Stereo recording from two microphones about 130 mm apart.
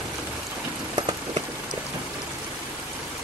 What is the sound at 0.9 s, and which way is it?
Rain on surface, 45° right (ahead or behind).